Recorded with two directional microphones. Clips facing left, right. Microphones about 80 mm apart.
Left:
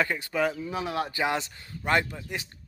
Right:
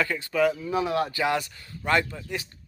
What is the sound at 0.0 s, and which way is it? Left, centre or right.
Speech, centre.